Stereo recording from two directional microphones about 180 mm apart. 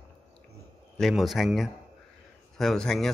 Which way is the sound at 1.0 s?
Centre (ahead or behind).